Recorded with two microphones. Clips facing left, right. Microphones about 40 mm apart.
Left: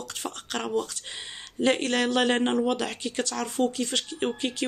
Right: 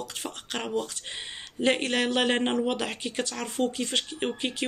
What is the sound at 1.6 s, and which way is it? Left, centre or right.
Speech, right.